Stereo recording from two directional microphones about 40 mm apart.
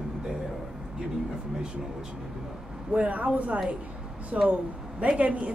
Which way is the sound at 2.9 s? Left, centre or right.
Right.